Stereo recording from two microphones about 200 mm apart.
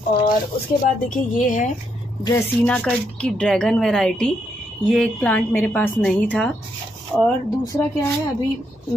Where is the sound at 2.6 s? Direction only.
5° left (ahead or behind).